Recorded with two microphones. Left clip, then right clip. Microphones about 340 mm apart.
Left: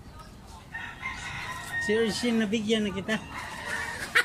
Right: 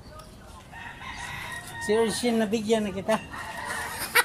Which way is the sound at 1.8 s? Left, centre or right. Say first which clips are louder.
Right 2 dB; centre.